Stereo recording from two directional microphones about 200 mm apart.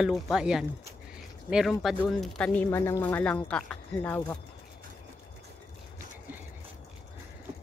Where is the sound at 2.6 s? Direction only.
15° left (ahead or behind).